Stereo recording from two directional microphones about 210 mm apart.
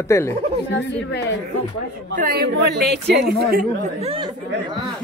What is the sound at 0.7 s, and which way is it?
Speech, 50° left (ahead or behind).